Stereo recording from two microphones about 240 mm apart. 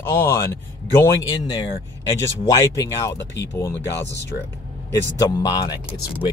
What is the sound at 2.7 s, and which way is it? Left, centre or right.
Speech, centre.